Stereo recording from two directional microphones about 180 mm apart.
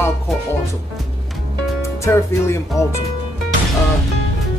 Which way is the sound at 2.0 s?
15° left (ahead or behind).